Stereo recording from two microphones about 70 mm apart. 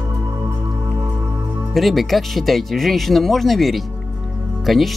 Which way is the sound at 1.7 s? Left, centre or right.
Centre.